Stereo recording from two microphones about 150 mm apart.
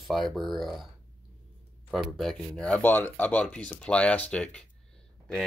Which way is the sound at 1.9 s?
Centre (ahead or behind).